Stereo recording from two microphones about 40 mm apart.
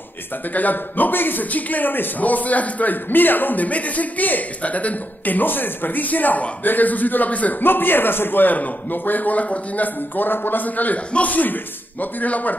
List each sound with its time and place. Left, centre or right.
0.5 s a man's voice: left
7.6 s a man's voice: left